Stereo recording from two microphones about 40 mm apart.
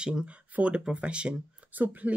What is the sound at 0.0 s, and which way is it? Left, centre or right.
Speech, centre.